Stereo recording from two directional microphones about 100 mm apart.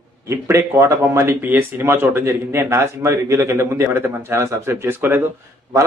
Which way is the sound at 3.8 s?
20° right (ahead or behind).